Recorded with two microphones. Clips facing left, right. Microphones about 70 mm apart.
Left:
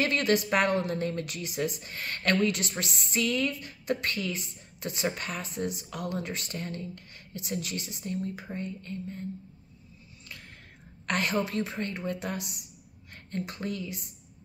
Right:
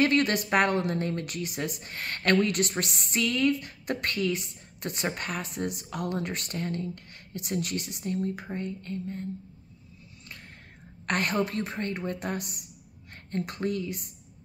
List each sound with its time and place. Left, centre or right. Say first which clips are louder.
0.0 s a woman's voice: right 2 dB; right
11.1 s a woman's voice: right 1 dB; right